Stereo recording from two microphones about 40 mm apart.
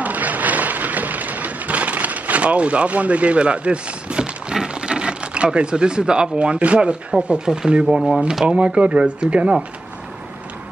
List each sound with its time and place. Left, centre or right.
0.0 s a sound: right
6.3 s speech: right; by 8.2 s centre
8.5 s speech: right